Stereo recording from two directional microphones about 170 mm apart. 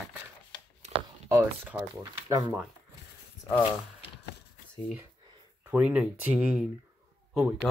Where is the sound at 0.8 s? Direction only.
40° right (ahead or behind).